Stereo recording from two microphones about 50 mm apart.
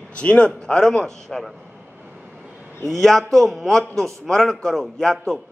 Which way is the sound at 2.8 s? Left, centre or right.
Centre.